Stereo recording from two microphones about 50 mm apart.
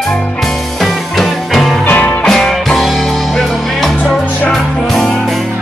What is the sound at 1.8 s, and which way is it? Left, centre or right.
Music, left.